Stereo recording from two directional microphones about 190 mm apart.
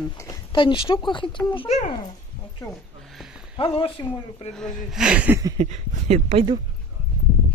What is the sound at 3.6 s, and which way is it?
Speech, 30° left (ahead or behind).